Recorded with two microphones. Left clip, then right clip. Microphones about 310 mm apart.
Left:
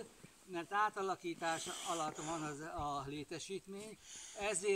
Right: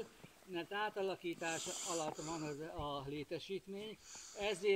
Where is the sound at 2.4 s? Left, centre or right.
Left.